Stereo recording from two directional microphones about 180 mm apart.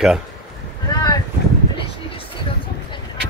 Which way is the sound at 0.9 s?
20° left (ahead or behind).